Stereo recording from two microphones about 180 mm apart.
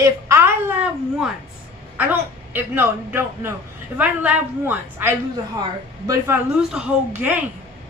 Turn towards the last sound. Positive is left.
turn(degrees=-10)  # may be behind; listen again after turning